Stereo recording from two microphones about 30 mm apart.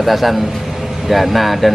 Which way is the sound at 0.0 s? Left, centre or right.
Centre.